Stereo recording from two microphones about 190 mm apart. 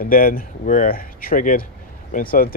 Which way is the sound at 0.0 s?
50° left (ahead or behind).